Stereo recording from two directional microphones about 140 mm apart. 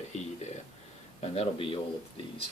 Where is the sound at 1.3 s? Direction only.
40° left (ahead or behind).